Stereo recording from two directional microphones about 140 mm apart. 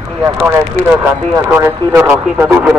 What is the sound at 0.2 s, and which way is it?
Speech, 15° right (ahead or behind).